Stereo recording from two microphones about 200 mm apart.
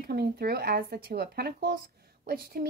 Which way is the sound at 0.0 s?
50° right (ahead or behind).